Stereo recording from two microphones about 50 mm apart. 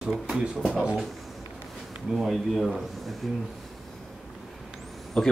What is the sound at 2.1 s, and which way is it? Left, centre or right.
A man's voice, centre.